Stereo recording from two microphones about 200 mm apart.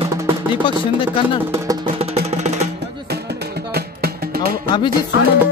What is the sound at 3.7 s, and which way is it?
Music, 50° right (ahead or behind).